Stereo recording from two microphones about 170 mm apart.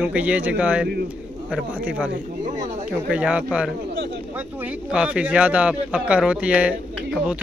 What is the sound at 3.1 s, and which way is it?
A man's voice, 5° right (ahead or behind).